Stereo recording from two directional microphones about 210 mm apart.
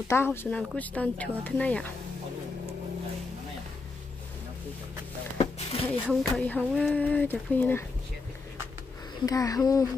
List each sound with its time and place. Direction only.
0.1 s speech: 10° left (ahead or behind)
5.4 s a sound: 30° left (ahead or behind)
6.0 s speech: 5° left (ahead or behind)
9.2 s speech: 15° left (ahead or behind)